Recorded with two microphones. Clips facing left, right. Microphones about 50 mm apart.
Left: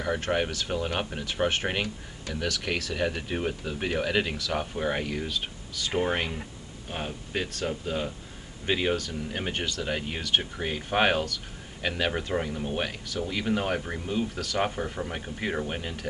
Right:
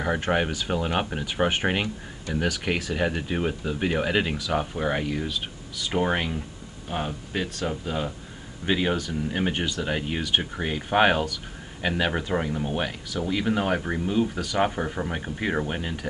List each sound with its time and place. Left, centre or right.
0.2 s speech: centre
7.3 s speech: centre